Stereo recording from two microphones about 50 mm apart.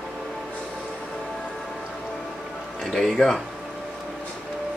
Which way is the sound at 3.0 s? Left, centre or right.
Centre.